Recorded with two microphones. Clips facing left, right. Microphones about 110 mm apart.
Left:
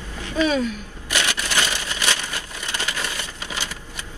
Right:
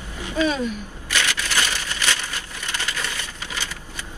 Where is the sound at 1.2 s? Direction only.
20° left (ahead or behind).